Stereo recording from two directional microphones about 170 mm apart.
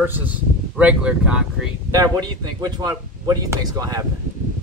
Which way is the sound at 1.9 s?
20° right (ahead or behind).